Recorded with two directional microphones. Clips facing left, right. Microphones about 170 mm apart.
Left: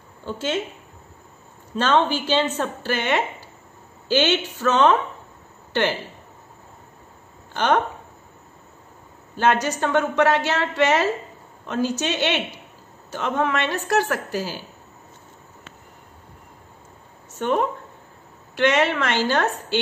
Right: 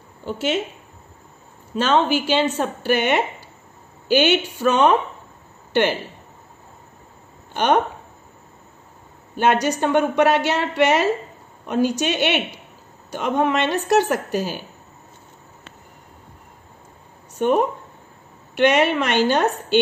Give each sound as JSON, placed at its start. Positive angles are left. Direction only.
{"t": 0.2, "sound": "speech", "side_deg": -15}
{"t": 1.8, "sound": "a woman's voice", "side_deg": -10}
{"t": 7.5, "sound": "a woman's voice", "side_deg": -15}
{"t": 9.4, "sound": "a woman's voice", "side_deg": -15}
{"t": 17.3, "sound": "a woman's voice", "side_deg": -15}